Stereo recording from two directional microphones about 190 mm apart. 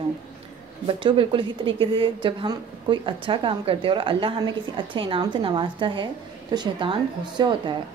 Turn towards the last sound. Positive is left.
turn(degrees=-25)  # may be behind; listen again after turning